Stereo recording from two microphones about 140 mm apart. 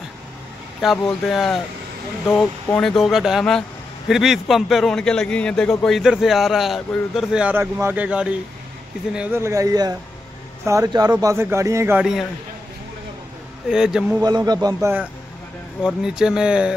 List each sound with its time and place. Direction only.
0.8 s a man's voice: centre (ahead or behind)
9.4 s a man's voice: 20° right (ahead or behind)
13.7 s a man's voice: 5° right (ahead or behind)
14.2 s a man's voice: 30° right (ahead or behind)
15.8 s a man's voice: 5° right (ahead or behind)